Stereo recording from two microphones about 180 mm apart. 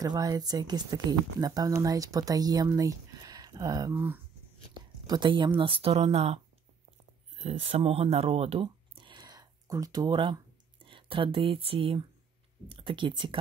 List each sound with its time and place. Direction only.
0.0 s speech: 20° right (ahead or behind)
5.0 s speech: 25° right (ahead or behind)